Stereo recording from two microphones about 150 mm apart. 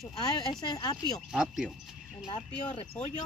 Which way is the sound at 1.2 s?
Centre (ahead or behind).